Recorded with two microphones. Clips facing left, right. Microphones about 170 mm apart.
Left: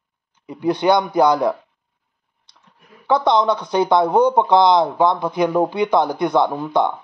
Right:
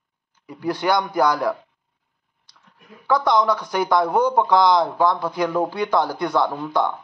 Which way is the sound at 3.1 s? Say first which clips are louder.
Left 2 dB; 25° left (ahead or behind).